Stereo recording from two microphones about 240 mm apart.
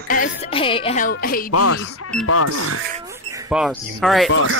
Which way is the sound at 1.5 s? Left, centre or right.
Left.